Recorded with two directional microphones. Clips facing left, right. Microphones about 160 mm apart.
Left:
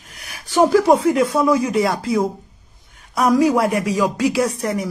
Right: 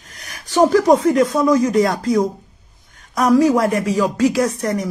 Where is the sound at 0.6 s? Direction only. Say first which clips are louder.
Right 1 dB; 10° left (ahead or behind).